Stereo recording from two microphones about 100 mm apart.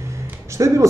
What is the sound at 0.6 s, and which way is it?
Speech, 35° right (ahead or behind).